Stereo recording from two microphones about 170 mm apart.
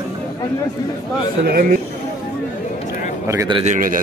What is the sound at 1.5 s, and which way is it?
Speech, 60° right (ahead or behind).